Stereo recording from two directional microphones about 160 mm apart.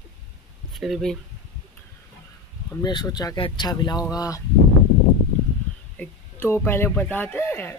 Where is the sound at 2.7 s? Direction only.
25° left (ahead or behind).